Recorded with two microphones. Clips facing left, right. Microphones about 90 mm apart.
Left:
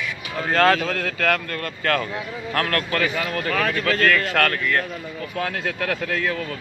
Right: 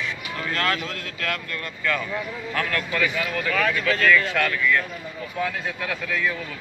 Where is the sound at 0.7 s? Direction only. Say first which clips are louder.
Left 7 dB; 70° left (ahead or behind).